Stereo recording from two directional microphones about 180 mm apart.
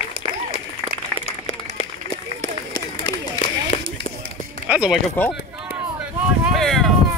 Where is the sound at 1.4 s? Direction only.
35° left (ahead or behind).